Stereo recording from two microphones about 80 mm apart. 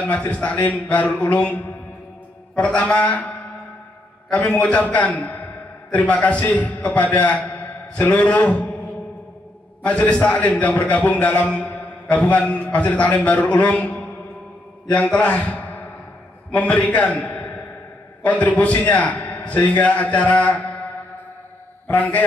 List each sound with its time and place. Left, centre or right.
0.0 s a man's voice: centre
4.5 s a man's voice: centre
9.8 s a man's voice: centre
21.8 s a man's voice: left